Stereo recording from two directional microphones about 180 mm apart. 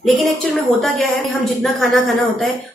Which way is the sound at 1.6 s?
Centre (ahead or behind).